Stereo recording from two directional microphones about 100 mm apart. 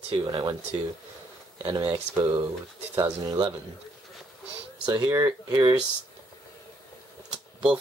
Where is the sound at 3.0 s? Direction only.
50° right (ahead or behind).